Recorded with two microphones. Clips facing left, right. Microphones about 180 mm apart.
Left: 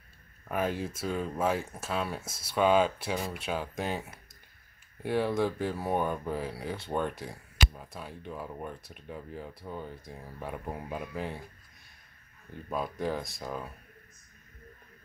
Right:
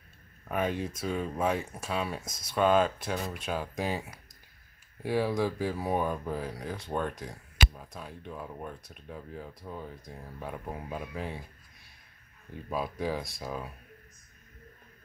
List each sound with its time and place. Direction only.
0.5 s speech: 5° left (ahead or behind)
12.6 s speech: 5° right (ahead or behind)